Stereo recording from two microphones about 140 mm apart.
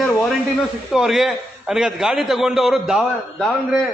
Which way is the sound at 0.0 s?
Centre (ahead or behind).